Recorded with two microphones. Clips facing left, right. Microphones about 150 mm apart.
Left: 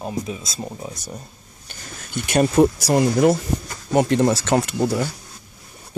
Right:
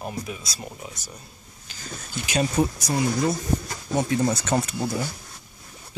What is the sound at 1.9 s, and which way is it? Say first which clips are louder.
Speech: left 6 dB; 60° left (ahead or behind).